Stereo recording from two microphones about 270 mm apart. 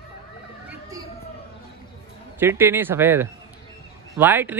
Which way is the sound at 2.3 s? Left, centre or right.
Centre.